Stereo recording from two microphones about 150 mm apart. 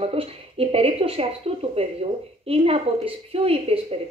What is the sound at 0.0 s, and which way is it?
A woman's voice, 40° right (ahead or behind).